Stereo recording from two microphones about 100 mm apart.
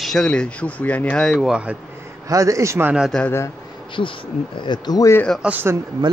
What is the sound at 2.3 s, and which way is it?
Speech, 35° right (ahead or behind).